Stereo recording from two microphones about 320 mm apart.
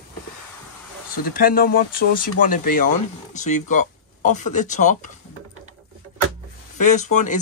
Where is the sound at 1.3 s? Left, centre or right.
Left.